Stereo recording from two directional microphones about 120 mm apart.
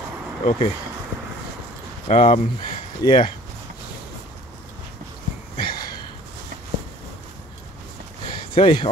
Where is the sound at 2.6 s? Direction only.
40° left (ahead or behind).